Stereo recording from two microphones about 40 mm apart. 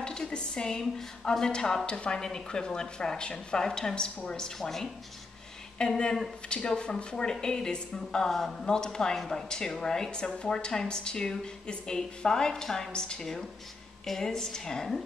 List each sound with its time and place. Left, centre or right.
0.0 s speech: left
4.6 s a woman's voice: centre
5.8 s a woman's voice: left
9.2 s a woman's voice: centre